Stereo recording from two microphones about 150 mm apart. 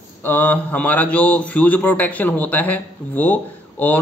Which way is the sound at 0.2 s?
10° left (ahead or behind).